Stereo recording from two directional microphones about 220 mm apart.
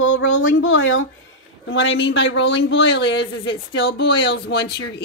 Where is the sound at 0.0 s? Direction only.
60° left (ahead or behind).